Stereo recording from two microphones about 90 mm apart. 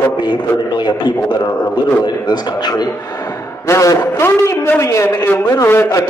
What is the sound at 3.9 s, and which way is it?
Speech, 50° left (ahead or behind).